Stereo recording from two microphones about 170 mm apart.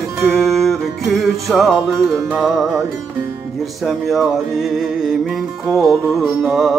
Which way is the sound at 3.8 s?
Centre (ahead or behind).